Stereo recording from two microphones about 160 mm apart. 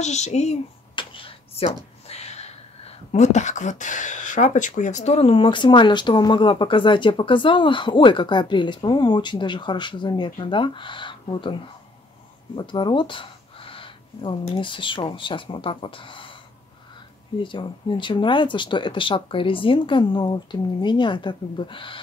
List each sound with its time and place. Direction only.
0.0 s speech: 45° left (ahead or behind)
0.9 s a sound: 35° left (ahead or behind)
2.0 s speech: 40° left (ahead or behind)
12.5 s a sound: 30° left (ahead or behind)
14.4 s speech: 30° left (ahead or behind)
17.4 s a woman's voice: 30° left (ahead or behind)